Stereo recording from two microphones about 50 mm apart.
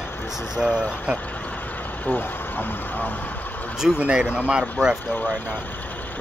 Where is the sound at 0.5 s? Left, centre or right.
Centre.